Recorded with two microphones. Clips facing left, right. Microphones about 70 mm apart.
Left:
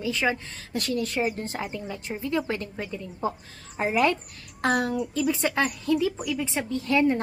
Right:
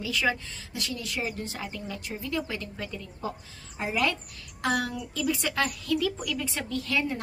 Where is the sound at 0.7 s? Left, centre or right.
Left.